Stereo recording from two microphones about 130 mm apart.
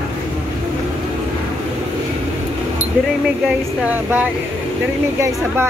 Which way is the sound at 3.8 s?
15° right (ahead or behind).